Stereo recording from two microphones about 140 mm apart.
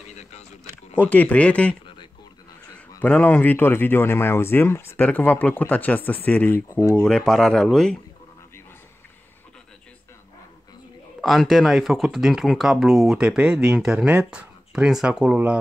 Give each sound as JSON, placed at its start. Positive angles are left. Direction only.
{"t": 0.9, "sound": "speech", "side_deg": 10}
{"t": 3.0, "sound": "speech", "side_deg": 10}
{"t": 7.0, "sound": "speech", "side_deg": 5}
{"t": 11.1, "sound": "speech", "side_deg": 0}